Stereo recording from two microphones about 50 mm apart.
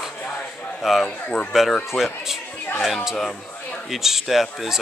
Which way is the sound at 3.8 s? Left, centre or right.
Centre.